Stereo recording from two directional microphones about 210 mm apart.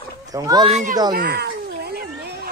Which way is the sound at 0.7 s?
35° right (ahead or behind).